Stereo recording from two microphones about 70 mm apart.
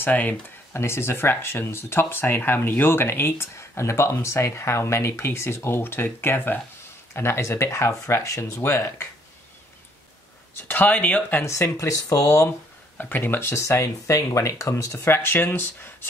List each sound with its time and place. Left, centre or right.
0.0 s speech: left
0.7 s speech: left
10.7 s speech: left
11.4 s speech: left
11.7 s speech: left
12.9 s speech: left